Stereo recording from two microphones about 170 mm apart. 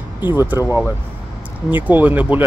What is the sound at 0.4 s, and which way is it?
Speech, 15° right (ahead or behind).